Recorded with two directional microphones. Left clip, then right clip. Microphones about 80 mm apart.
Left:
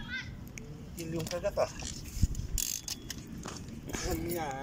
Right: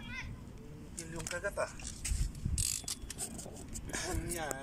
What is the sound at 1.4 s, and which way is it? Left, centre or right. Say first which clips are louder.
Speech: left 6 dB; left.